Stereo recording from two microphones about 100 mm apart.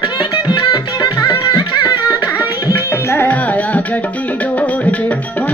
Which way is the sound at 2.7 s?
25° left (ahead or behind).